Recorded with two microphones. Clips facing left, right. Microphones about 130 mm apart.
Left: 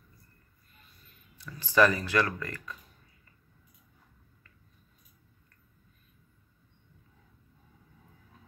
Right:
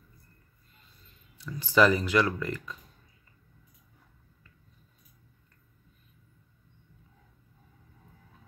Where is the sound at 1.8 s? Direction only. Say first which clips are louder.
Right 2 dB; 15° right (ahead or behind).